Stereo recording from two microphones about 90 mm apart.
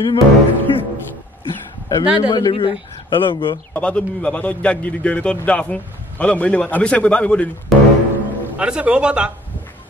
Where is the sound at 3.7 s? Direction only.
15° left (ahead or behind).